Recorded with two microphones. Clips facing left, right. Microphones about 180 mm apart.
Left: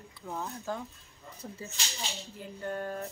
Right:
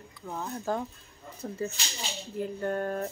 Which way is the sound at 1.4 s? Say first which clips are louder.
Right 7 dB; 65° right (ahead or behind).